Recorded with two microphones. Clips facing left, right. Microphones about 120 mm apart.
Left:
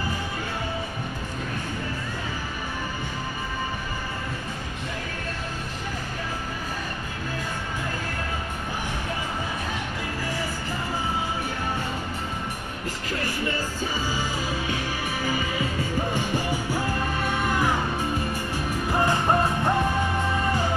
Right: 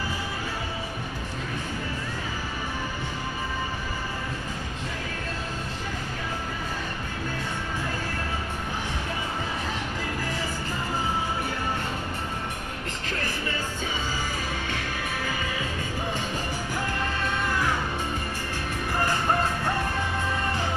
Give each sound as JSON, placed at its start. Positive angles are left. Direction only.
{"t": 16.2, "sound": "music", "side_deg": 10}
{"t": 18.9, "sound": "music", "side_deg": 15}